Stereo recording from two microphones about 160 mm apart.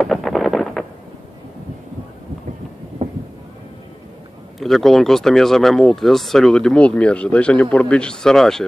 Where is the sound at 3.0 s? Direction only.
45° right (ahead or behind).